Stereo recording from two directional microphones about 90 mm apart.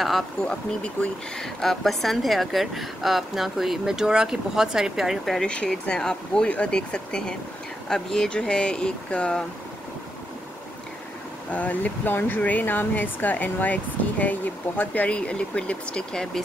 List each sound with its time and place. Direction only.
0.5 s speech: 10° left (ahead or behind)
11.5 s speech: 15° left (ahead or behind)